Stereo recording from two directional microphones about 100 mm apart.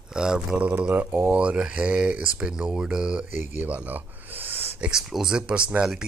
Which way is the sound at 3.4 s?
15° right (ahead or behind).